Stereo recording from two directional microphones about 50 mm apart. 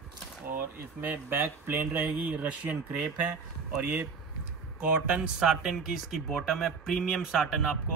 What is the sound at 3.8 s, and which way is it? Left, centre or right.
Speech, right.